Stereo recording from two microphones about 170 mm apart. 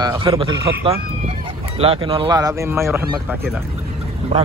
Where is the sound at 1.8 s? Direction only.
35° right (ahead or behind); by 2.8 s 15° right (ahead or behind).